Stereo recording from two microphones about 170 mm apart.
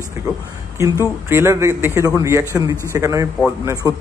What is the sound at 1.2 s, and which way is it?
A man's voice, 15° right (ahead or behind).